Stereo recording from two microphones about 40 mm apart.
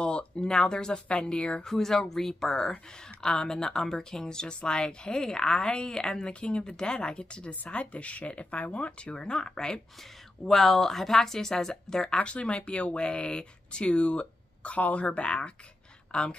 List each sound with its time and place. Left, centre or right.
0.0 s a sound: left
0.5 s speech: centre
1.6 s a woman's voice: centre; by 8.9 s left
9.0 s speech: left
10.4 s a woman's voice: centre
12.1 s speech: left